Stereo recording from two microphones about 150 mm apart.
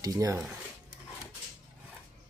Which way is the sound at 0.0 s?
25° right (ahead or behind).